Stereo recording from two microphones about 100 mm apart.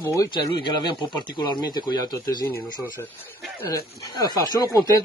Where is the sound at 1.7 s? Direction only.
40° left (ahead or behind).